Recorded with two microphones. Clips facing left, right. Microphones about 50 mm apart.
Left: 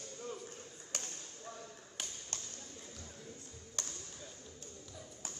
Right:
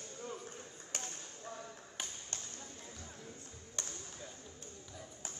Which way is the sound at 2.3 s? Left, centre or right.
Right.